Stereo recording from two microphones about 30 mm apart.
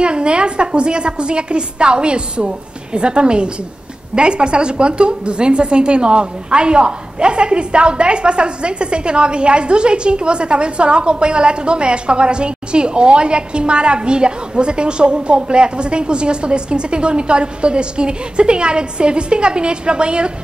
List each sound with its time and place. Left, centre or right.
0.0 s a woman's voice: right